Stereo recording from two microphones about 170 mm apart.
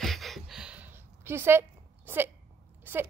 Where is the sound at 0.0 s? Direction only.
Centre (ahead or behind).